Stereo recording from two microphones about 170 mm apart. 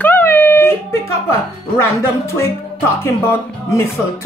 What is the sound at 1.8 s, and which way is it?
Speech, 15° left (ahead or behind).